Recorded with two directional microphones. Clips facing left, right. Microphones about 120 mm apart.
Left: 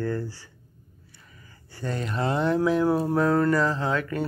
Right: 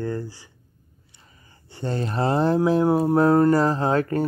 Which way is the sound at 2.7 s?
30° right (ahead or behind).